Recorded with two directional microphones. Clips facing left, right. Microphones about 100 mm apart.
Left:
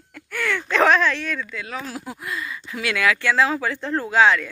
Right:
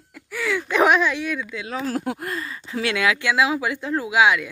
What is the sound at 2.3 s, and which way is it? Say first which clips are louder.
Speech: even; 35° right (ahead or behind).